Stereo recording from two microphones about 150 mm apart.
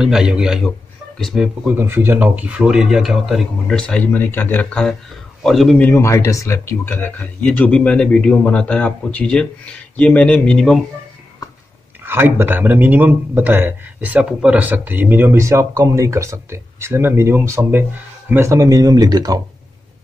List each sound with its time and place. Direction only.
0.0 s speech: 5° right (ahead or behind)
1.8 s speech: 15° right (ahead or behind); by 5.9 s centre (ahead or behind)
5.9 s speech: 20° left (ahead or behind)
12.1 s a man's voice: 15° right (ahead or behind)